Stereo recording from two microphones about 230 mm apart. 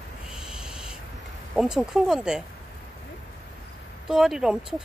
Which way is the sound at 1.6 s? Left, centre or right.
Centre.